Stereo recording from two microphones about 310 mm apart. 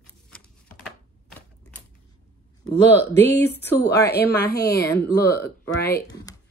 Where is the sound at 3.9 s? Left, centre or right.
Left.